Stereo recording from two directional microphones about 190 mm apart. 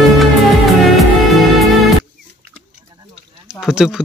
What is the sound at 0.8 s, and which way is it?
Music, centre (ahead or behind).